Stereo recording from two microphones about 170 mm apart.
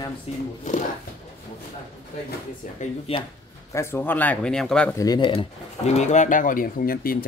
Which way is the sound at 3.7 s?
15° left (ahead or behind).